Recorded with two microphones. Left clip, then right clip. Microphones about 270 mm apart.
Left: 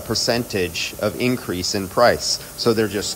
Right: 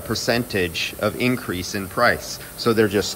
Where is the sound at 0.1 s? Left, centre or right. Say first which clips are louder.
Left 1 dB; centre.